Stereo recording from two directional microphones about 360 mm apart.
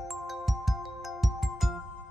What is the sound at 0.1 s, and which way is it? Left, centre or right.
Music, centre.